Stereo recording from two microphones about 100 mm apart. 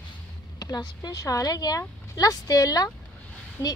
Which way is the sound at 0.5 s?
45° left (ahead or behind).